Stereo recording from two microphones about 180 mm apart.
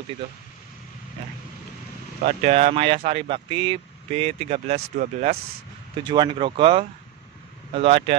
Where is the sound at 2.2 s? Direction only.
35° right (ahead or behind).